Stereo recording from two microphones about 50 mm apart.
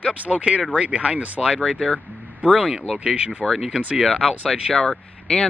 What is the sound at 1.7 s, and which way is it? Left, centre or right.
Speech, centre.